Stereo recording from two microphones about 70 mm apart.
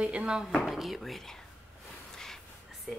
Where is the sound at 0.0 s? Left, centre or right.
Centre.